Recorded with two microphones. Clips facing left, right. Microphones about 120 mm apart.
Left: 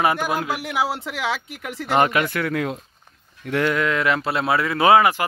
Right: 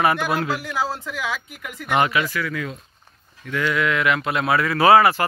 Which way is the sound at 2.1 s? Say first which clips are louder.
Left 2 dB; 55° left (ahead or behind).